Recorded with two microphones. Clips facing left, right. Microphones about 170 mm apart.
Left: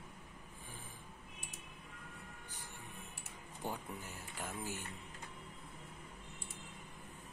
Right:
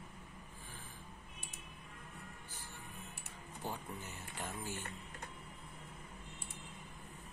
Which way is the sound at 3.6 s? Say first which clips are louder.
Left 1 dB; 15° left (ahead or behind).